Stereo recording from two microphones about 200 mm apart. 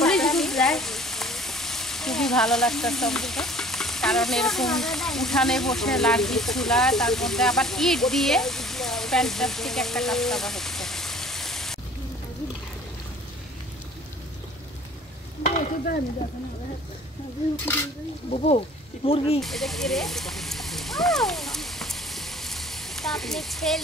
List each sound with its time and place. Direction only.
0.0 s frying: centre (ahead or behind)
15.4 s stir: 45° left (ahead or behind)
19.0 s speech: 30° left (ahead or behind)
19.4 s a sound: centre (ahead or behind)